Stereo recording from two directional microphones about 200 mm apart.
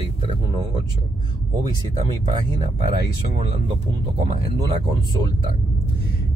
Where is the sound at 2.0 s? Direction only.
25° right (ahead or behind).